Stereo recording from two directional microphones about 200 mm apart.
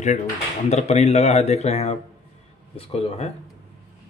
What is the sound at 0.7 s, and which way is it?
Speech, 35° left (ahead or behind).